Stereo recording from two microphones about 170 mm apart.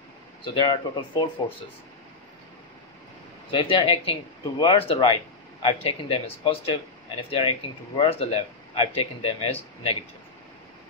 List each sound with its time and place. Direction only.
0.6 s speech: 30° left (ahead or behind)
3.5 s speech: 30° left (ahead or behind)